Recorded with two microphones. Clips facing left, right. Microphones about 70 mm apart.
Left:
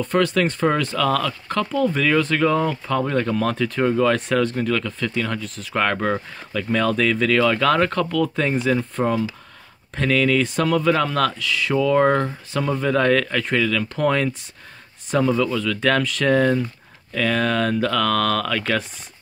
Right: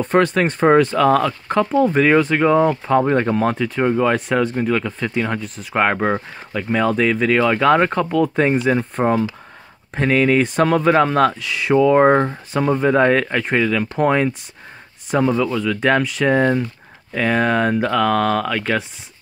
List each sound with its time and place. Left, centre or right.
0.0 s speech: right
3.5 s speech: centre
17.1 s speech: right